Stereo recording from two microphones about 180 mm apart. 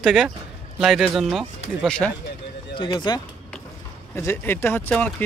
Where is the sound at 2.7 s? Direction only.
25° left (ahead or behind).